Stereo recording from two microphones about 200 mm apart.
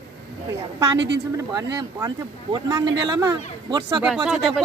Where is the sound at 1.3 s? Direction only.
15° right (ahead or behind).